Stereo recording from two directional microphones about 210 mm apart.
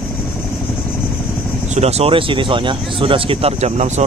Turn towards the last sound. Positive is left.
turn(degrees=-30)  # may be behind; listen again after turning